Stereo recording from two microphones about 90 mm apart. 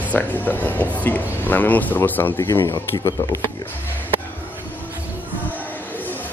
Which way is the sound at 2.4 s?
35° left (ahead or behind).